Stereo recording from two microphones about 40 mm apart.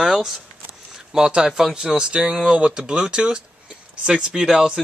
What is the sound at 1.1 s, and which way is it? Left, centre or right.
Speech, centre.